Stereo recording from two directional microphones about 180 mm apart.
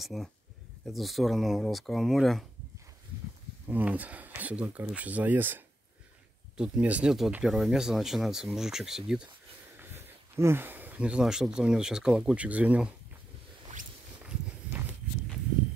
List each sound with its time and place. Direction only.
0.0 s speech: centre (ahead or behind)
3.6 s speech: 10° right (ahead or behind)